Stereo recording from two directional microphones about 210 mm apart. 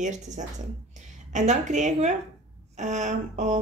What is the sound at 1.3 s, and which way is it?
A woman's voice, 35° right (ahead or behind).